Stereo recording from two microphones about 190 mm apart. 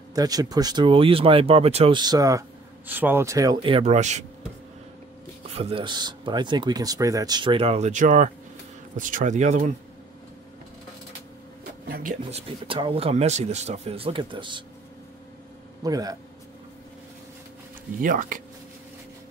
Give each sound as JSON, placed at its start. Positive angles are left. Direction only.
{"t": 0.1, "sound": "speech", "side_deg": -20}
{"t": 5.5, "sound": "speech", "side_deg": -30}
{"t": 11.9, "sound": "speech", "side_deg": -45}
{"t": 15.8, "sound": "speech", "side_deg": -20}
{"t": 18.0, "sound": "speech", "side_deg": -45}